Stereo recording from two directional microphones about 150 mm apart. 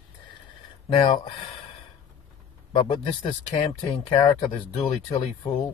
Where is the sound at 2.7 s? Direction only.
30° left (ahead or behind).